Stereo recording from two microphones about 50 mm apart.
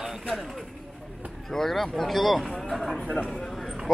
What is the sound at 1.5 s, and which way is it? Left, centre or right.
Speech, centre.